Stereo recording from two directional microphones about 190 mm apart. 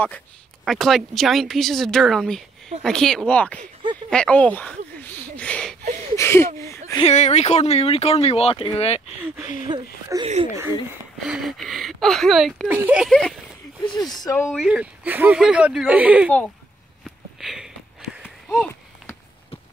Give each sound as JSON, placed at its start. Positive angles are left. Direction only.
{"t": 0.7, "sound": "speech", "side_deg": 0}
{"t": 4.1, "sound": "a sound", "side_deg": 5}
{"t": 7.0, "sound": "speech", "side_deg": 35}
{"t": 9.7, "sound": "speech", "side_deg": -20}
{"t": 10.2, "sound": "speech", "side_deg": -35}
{"t": 11.2, "sound": "speech", "side_deg": 0}
{"t": 13.8, "sound": "speech", "side_deg": 20}
{"t": 14.6, "sound": "speech", "side_deg": -5}
{"t": 16.3, "sound": "speech", "side_deg": 5}
{"t": 17.0, "sound": "sniff", "side_deg": 0}
{"t": 18.5, "sound": "a sound", "side_deg": 10}